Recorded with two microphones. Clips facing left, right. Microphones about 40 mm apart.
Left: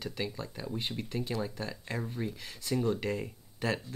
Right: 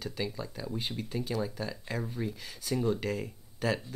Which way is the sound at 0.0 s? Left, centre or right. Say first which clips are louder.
Right 1 dB; centre.